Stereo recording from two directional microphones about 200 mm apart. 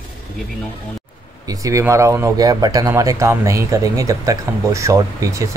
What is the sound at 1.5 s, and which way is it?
Speech, 15° right (ahead or behind).